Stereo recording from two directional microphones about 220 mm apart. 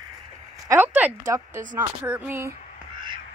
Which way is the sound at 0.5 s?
10° right (ahead or behind).